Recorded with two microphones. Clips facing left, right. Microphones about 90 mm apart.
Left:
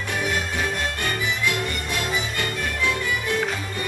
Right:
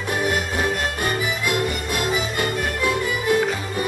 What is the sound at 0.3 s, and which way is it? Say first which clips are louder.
Music: right 3 dB; 10° right (ahead or behind).